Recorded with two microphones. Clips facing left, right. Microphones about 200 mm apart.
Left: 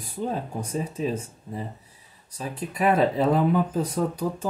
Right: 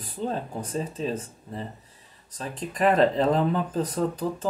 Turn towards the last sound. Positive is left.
turn(degrees=10)  # may be behind; listen again after turning